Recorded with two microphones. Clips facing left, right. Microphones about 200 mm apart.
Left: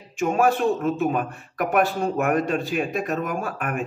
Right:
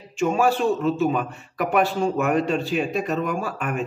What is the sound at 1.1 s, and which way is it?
Speech, 50° left (ahead or behind).